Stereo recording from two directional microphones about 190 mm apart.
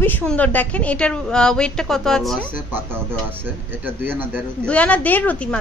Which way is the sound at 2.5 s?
10° right (ahead or behind).